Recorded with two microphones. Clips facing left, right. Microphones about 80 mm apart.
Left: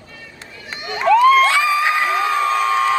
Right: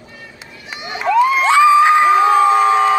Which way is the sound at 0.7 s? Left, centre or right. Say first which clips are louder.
Left 3 dB; centre.